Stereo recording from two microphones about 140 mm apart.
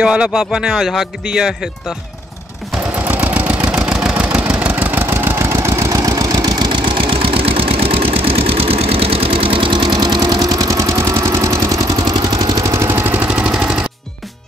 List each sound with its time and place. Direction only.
0.0 s speech: 5° right (ahead or behind)
3.3 s engine: 10° right (ahead or behind)